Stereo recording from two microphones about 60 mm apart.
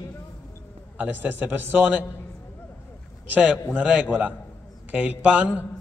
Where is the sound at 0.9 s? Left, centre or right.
Right.